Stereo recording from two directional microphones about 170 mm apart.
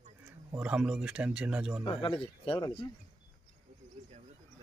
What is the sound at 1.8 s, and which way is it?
Speech, 30° left (ahead or behind).